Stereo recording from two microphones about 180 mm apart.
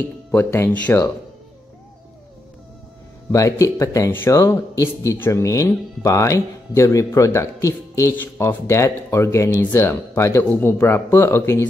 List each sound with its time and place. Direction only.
0.3 s speech: 10° left (ahead or behind)
3.3 s speech: 15° left (ahead or behind)